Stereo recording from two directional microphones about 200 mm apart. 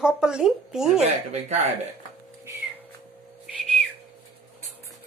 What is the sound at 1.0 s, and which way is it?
Speech, 35° right (ahead or behind).